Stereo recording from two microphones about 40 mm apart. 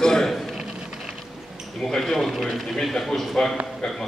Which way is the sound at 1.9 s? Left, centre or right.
Centre.